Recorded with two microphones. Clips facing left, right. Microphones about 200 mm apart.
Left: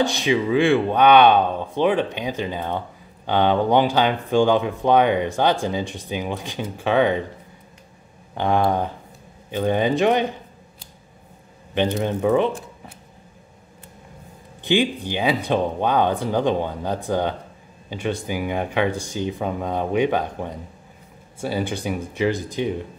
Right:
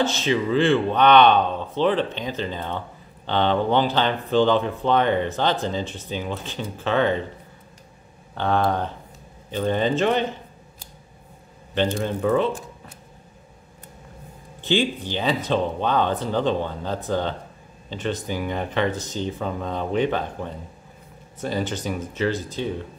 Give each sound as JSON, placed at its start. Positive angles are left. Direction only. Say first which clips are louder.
{"t": 0.0, "sound": "speech", "louder": "left 2 dB", "side_deg": 15}
{"t": 8.4, "sound": "speech", "louder": "left 2 dB", "side_deg": 15}
{"t": 11.7, "sound": "speech", "louder": "left 2 dB", "side_deg": 15}
{"t": 14.6, "sound": "speech", "louder": "left 2 dB", "side_deg": 15}